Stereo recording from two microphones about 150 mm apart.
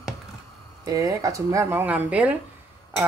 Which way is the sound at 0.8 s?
20° right (ahead or behind).